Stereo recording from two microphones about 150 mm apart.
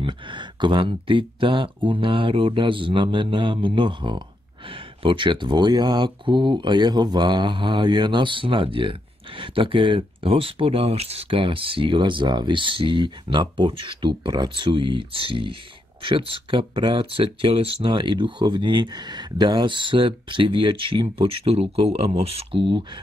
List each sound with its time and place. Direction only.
0.0 s speech: 30° right (ahead or behind)